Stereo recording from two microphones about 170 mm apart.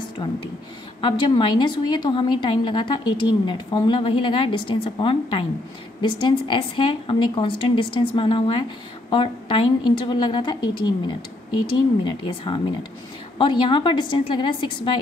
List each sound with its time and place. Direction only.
0.2 s a woman's voice: 25° left (ahead or behind)